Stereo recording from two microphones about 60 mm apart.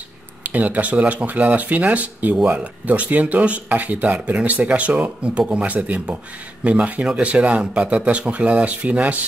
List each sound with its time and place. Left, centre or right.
0.4 s speech: right